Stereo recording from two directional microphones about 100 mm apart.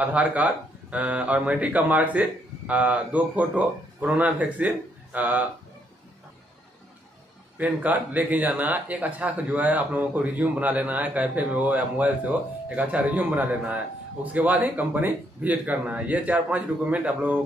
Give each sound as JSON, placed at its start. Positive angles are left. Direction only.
{"t": 0.0, "sound": "speech", "side_deg": -15}
{"t": 7.5, "sound": "speech", "side_deg": -15}